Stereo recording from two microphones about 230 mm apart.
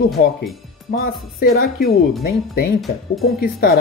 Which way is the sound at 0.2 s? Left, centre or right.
Left.